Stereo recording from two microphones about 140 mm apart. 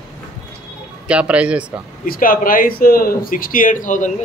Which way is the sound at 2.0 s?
85° left.